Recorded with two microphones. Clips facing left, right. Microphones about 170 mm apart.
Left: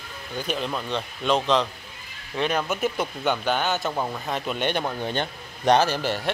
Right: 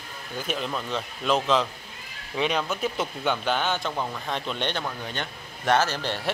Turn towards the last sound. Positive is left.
turn(degrees=5)  # may be behind; listen again after turning